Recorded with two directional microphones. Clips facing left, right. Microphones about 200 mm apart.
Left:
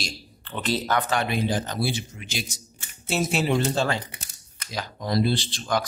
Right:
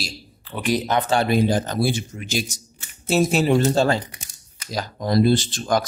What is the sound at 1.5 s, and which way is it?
Speech, 45° right (ahead or behind).